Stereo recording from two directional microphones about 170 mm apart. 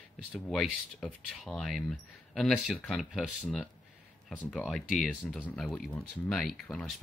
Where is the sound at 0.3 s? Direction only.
Centre (ahead or behind).